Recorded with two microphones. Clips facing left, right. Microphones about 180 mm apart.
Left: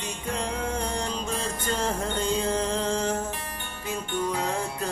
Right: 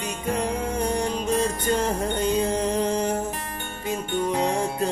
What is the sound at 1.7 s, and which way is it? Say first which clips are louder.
Music: right 1 dB; 15° right (ahead or behind).